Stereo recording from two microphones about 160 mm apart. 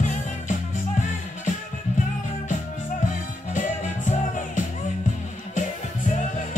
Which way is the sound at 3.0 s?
50° left (ahead or behind).